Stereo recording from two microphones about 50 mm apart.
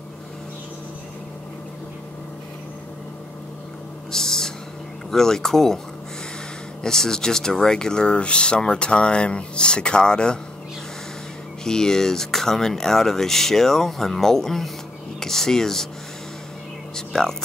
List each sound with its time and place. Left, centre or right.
4.1 s owl: centre
5.1 s speech: centre
6.8 s speech: centre
11.6 s speech: centre
16.9 s a sound: centre